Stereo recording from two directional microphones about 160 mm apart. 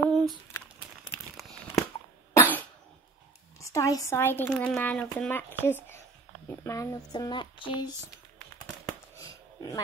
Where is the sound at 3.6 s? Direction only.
20° left (ahead or behind).